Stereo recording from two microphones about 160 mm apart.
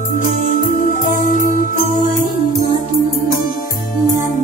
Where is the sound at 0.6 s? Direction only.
55° left (ahead or behind).